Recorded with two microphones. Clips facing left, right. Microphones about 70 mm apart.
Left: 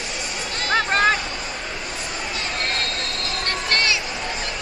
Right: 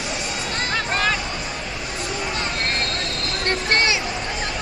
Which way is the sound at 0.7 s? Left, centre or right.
Left.